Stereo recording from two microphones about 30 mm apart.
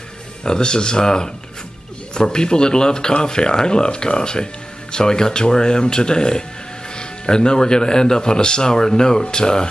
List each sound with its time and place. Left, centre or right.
0.4 s speech: left